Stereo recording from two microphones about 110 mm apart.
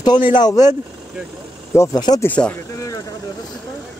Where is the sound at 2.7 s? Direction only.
30° left (ahead or behind).